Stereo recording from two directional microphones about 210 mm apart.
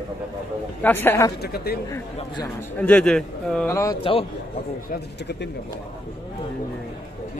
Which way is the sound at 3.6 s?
15° left (ahead or behind).